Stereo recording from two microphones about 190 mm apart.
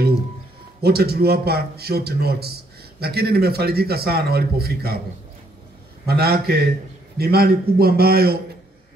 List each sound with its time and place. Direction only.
0.8 s a man's voice: 55° right (ahead or behind)
6.0 s a man's voice: 55° right (ahead or behind)